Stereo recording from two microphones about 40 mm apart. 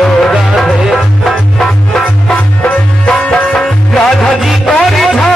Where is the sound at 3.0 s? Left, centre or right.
Left.